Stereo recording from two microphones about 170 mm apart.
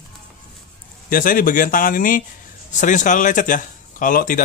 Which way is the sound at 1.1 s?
55° left (ahead or behind).